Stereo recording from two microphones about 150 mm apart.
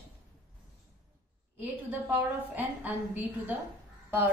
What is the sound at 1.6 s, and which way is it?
A woman's voice, 10° right (ahead or behind).